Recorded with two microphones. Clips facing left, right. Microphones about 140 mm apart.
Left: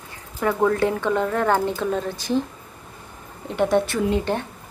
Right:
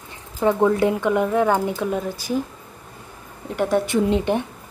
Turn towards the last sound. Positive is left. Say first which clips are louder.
# right 3 dB
turn(degrees=-15)  # may be behind; listen again after turning